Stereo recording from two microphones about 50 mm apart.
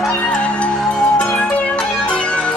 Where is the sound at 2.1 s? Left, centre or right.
Left.